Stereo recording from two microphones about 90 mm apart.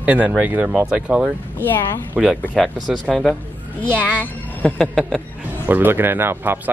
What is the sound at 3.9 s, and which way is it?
Speech, 15° left (ahead or behind).